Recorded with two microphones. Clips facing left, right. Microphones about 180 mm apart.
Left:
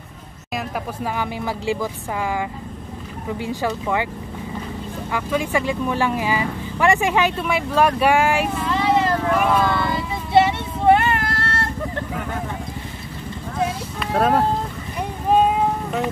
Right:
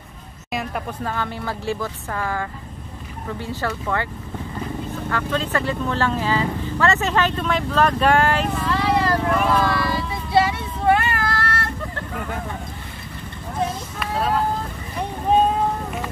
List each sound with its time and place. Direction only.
0.5 s vehicle: centre (ahead or behind)
1.0 s speech: 10° left (ahead or behind)
5.1 s speech: 10° left (ahead or behind)
9.3 s speech: 5° left (ahead or behind)
9.7 s a sound: 20° left (ahead or behind)
14.1 s speech: 50° left (ahead or behind)